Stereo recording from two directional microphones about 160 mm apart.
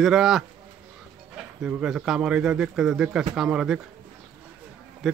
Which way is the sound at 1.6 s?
5° right (ahead or behind).